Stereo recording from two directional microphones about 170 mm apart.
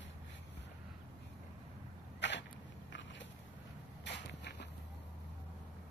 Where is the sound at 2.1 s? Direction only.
90° left.